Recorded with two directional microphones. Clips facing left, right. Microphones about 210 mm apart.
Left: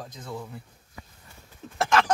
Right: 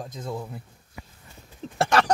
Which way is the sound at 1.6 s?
30° right (ahead or behind).